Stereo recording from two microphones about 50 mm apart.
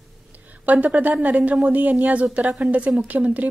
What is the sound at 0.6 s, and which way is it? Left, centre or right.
A woman's voice, right.